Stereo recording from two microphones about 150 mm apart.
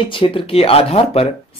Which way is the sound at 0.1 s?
35° left (ahead or behind).